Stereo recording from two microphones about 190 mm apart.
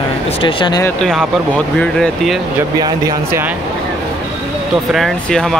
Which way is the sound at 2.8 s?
20° right (ahead or behind).